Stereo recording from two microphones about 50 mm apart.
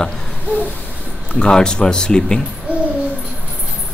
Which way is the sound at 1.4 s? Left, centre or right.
Centre.